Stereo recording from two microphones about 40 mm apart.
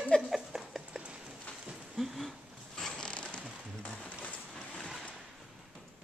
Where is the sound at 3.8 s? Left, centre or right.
Left.